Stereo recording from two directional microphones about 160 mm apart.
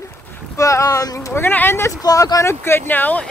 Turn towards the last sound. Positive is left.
turn(degrees=10)  # may be behind; listen again after turning